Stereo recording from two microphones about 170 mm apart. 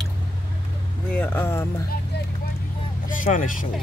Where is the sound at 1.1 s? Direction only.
10° left (ahead or behind).